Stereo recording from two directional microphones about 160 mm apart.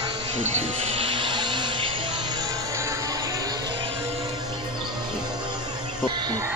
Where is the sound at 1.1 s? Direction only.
30° right (ahead or behind).